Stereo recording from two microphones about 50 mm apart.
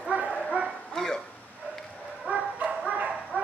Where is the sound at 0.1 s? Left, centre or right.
Right.